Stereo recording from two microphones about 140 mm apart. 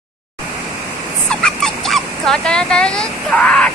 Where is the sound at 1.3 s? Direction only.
5° left (ahead or behind).